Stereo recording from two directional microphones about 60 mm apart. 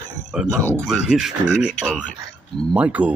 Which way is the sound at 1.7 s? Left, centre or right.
Left.